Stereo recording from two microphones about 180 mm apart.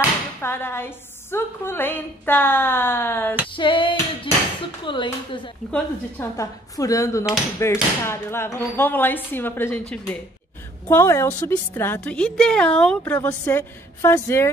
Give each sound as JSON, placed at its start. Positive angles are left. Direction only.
{"t": 0.4, "sound": "a woman's voice", "side_deg": 15}
{"t": 3.5, "sound": "a sound", "side_deg": 30}
{"t": 4.8, "sound": "speech", "side_deg": 25}
{"t": 5.7, "sound": "a woman's voice", "side_deg": 15}